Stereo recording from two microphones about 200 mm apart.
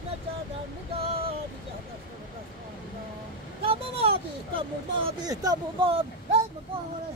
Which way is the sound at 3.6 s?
30° right (ahead or behind).